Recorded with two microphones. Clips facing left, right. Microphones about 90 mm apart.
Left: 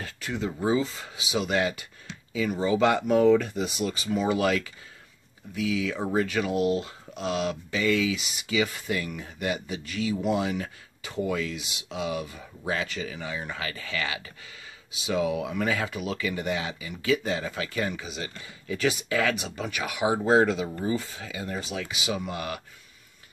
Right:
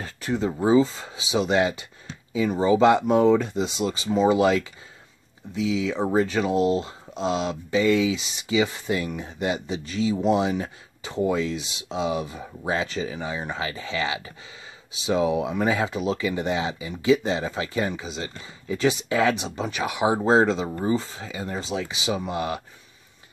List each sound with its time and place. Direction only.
0.0 s speech: 30° right (ahead or behind)